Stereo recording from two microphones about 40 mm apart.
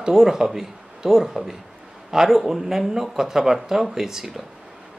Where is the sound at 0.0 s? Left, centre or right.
Centre.